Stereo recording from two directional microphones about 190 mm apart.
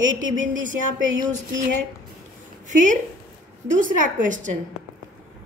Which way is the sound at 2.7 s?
40° right (ahead or behind).